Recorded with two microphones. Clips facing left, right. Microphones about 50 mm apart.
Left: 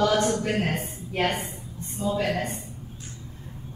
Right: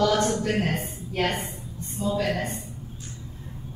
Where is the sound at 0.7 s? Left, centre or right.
Left.